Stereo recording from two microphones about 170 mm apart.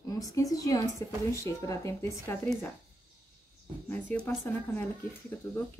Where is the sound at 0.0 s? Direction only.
20° left (ahead or behind).